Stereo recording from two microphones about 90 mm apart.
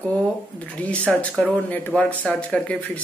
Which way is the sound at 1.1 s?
5° left (ahead or behind).